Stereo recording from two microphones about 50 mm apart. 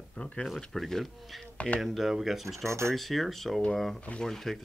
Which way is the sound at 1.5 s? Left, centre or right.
Left.